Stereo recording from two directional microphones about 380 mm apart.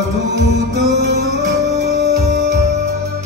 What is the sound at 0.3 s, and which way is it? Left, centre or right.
Music, right.